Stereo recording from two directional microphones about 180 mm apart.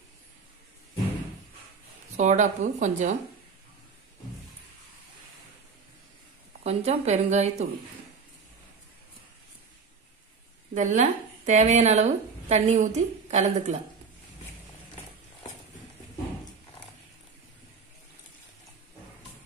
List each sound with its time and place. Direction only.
2.1 s speech: 40° right (ahead or behind)
6.6 s a woman's voice: 35° right (ahead or behind)
10.7 s speech: 45° right (ahead or behind)